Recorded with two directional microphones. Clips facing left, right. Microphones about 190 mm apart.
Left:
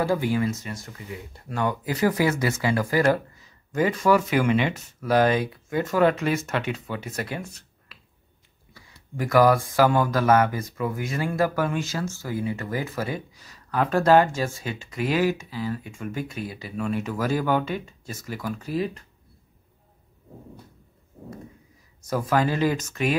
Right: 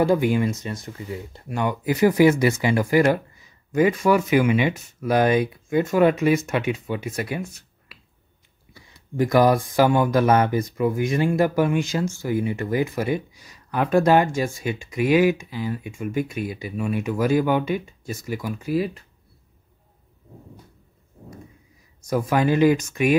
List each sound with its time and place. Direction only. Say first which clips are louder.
0.0 s speech: right 4 dB; 20° right (ahead or behind)
9.1 s speech: right 1 dB; 20° right (ahead or behind)
22.0 s speech: right 2 dB; 15° right (ahead or behind)